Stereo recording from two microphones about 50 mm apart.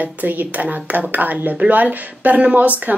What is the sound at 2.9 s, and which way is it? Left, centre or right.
Speech, right.